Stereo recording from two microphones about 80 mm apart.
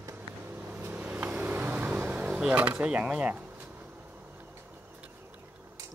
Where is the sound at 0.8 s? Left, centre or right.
Right.